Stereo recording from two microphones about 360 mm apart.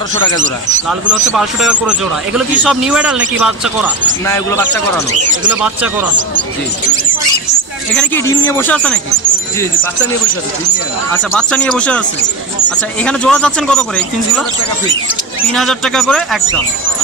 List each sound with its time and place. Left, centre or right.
0.4 s speech: right
1.3 s speech: centre
5.6 s speech: centre
8.0 s speech: centre
11.3 s speech: centre
13.0 s speech: centre
15.5 s speech: centre